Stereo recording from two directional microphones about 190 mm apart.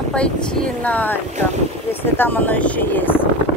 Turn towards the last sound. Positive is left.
turn(degrees=10)  # may be behind; listen again after turning